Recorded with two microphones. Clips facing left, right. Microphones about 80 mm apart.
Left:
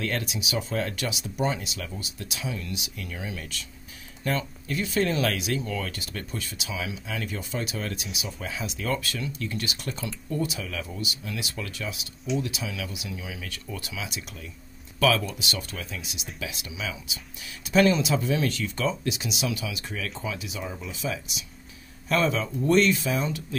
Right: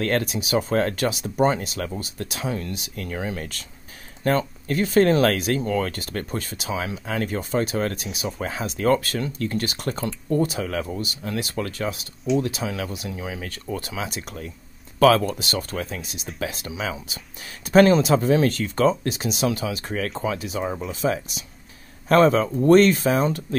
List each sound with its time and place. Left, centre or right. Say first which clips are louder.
0.0 s speech: right 7 dB; right